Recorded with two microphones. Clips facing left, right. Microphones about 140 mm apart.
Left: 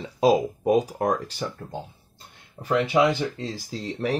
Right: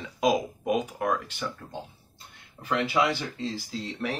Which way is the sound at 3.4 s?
45° left (ahead or behind).